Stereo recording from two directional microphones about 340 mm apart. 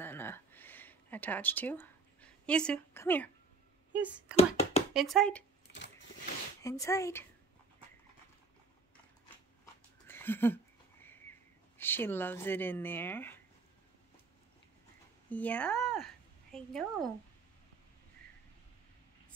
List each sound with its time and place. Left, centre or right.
0.0 s a sound: centre
3.9 s speech: centre
4.4 s a sound: centre
4.9 s speech: centre
5.7 s vehicle: left
6.6 s speech: centre
10.0 s a sound: centre
11.8 s speech: centre
15.2 s speech: centre